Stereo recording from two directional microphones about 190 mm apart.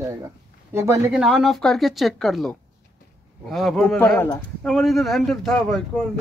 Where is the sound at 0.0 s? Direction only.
20° right (ahead or behind).